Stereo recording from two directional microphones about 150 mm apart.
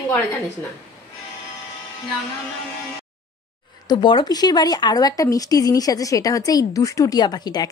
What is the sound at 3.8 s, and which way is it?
A woman's voice, 30° left (ahead or behind).